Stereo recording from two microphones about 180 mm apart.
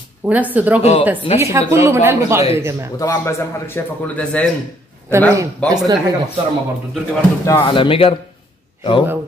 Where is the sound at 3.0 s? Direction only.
20° left (ahead or behind).